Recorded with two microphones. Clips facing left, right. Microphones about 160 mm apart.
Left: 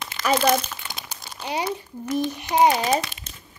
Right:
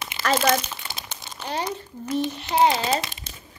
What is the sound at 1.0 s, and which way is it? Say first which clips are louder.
Crumpling: left 1 dB; 10° left (ahead or behind).